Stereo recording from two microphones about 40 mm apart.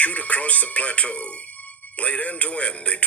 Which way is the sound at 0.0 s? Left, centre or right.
Left.